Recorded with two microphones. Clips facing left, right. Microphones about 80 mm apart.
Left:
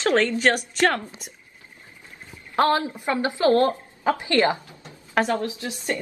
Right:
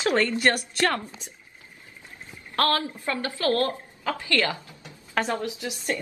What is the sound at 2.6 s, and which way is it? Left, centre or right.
A woman's voice, centre.